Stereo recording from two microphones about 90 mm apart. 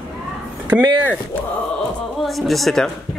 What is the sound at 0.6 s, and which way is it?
Speech, 15° right (ahead or behind).